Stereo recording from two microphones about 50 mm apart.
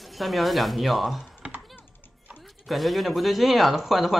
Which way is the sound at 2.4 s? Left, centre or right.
Centre.